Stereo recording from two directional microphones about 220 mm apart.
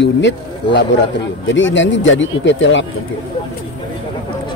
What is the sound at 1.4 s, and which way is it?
A man's voice, 55° left (ahead or behind).